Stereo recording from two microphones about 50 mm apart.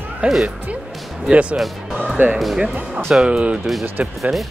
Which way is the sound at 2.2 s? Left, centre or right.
Right.